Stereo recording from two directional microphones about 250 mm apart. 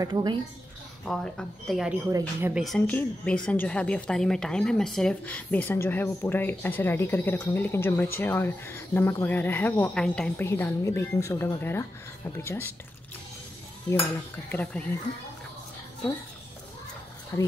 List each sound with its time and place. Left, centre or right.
0.0 s speech: centre
1.0 s speech: centre
14.5 s speech: centre